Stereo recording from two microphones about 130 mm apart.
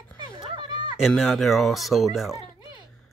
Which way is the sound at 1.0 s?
Centre (ahead or behind).